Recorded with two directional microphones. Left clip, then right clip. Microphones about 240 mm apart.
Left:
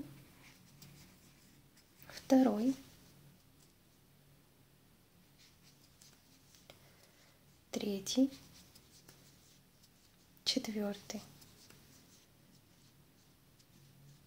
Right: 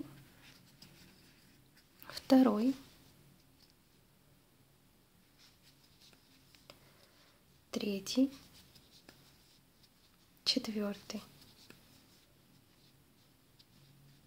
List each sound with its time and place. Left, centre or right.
2.0 s a sound: centre
7.7 s speech: centre
10.4 s speech: centre